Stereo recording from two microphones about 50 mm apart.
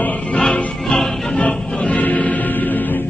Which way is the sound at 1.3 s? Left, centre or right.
Left.